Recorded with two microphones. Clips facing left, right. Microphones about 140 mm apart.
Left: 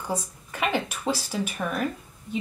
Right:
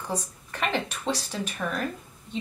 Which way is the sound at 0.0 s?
5° left (ahead or behind).